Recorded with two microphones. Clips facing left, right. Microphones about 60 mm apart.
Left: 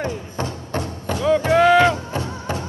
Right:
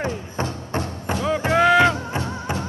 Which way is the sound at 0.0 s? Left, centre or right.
Right.